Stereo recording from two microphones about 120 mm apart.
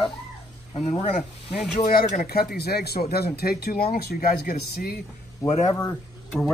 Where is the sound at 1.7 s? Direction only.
90° left.